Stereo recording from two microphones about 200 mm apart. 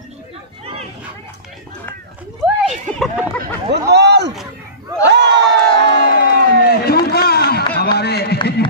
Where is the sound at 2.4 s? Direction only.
Centre (ahead or behind).